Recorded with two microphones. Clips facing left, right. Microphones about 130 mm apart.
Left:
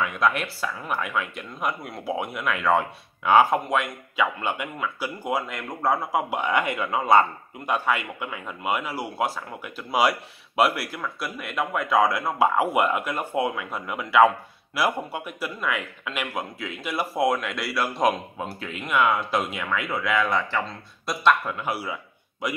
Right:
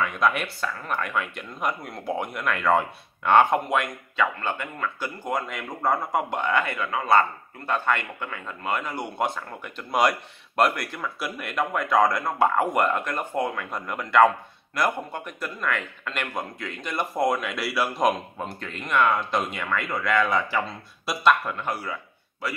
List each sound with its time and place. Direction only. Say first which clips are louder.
0.0 s speech: even; centre (ahead or behind)
4.2 s speech: left 1 dB; 10° left (ahead or behind)